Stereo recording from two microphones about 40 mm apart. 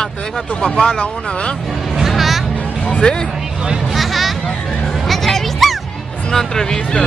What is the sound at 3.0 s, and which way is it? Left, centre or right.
Speech, left.